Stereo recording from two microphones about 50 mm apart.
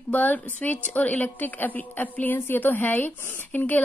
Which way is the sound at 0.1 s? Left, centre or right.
Left.